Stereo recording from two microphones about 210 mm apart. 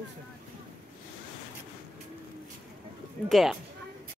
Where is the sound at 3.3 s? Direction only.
Centre (ahead or behind).